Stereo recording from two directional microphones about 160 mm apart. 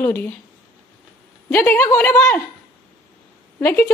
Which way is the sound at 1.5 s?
15° left (ahead or behind).